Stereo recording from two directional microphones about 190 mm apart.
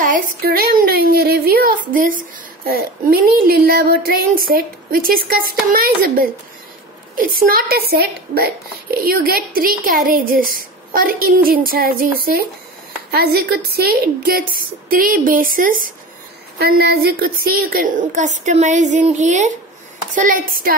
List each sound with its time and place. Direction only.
0.0 s speech: 50° right (ahead or behind)
13.1 s a woman's voice: 55° right (ahead or behind)